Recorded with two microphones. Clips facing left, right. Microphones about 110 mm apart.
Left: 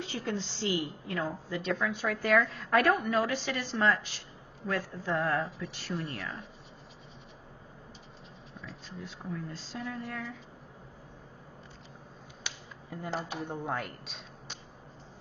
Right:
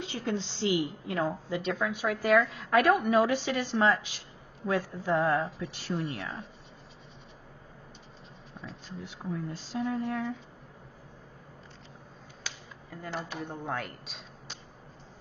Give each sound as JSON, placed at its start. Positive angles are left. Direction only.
{"t": 0.0, "sound": "a woman's voice", "side_deg": -20}
{"t": 5.3, "sound": "speech", "side_deg": 0}
{"t": 9.0, "sound": "speech", "side_deg": -20}
{"t": 12.4, "sound": "finger snapping", "side_deg": 20}
{"t": 13.5, "sound": "speech", "side_deg": 5}